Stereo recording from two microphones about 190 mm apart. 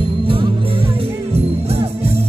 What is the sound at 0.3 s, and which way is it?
Music, 30° right (ahead or behind).